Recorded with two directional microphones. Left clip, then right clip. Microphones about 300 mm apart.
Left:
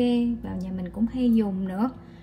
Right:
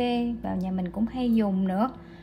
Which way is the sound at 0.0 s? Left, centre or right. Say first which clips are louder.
Left 2 dB; right.